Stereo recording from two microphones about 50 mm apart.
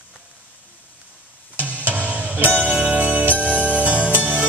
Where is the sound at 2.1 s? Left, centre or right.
Right.